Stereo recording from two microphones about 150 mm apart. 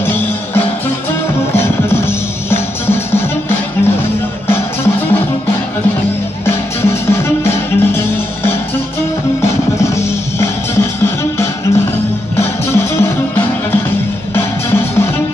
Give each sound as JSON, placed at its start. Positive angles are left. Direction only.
{"t": 0.0, "sound": "music", "side_deg": 15}
{"t": 6.4, "sound": "music", "side_deg": 15}
{"t": 10.4, "sound": "music", "side_deg": 15}